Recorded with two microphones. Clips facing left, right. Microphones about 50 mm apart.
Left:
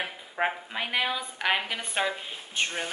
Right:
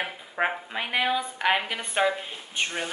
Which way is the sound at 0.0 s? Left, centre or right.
Centre.